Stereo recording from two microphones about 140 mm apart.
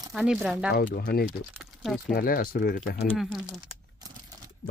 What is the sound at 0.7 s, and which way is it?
Speech, 90° left.